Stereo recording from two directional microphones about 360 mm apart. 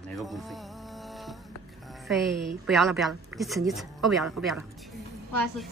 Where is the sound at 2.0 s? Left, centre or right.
Centre.